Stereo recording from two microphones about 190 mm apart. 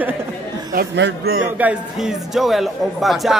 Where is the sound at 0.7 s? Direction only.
60° right (ahead or behind).